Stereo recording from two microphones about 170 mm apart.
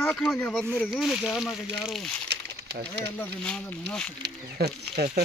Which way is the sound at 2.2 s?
80° right.